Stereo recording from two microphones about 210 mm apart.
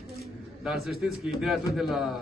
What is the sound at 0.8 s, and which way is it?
A man's voice, centre (ahead or behind).